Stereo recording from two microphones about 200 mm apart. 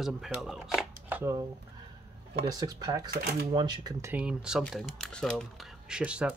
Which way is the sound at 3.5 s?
20° right (ahead or behind).